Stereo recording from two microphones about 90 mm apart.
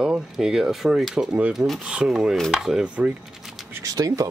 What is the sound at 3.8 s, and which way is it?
Speech, 40° right (ahead or behind).